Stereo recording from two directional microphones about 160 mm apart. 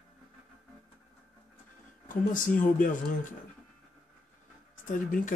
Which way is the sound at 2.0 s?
55° left (ahead or behind).